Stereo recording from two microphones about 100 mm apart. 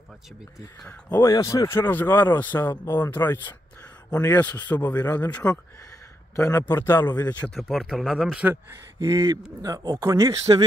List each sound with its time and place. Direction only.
1.2 s speech: 35° left (ahead or behind); by 5.6 s 15° left (ahead or behind)
6.3 s a man's voice: 30° left (ahead or behind); by 7.8 s 10° left (ahead or behind)
7.8 s speech: 5° right (ahead or behind)
9.0 s speech: 35° right (ahead or behind)